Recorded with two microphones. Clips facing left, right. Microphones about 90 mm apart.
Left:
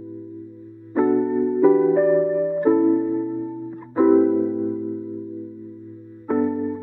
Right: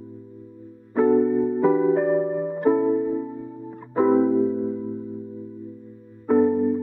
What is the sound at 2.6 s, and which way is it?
Music, centre (ahead or behind).